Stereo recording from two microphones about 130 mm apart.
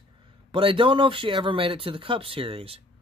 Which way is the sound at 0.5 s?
40° right (ahead or behind).